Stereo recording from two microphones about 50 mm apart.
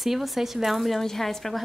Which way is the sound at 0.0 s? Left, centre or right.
Centre.